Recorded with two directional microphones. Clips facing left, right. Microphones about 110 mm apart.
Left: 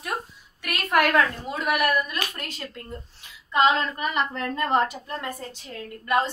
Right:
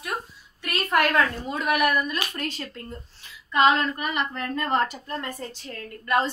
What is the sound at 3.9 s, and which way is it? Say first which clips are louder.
Speech: left 2 dB; 30° left (ahead or behind).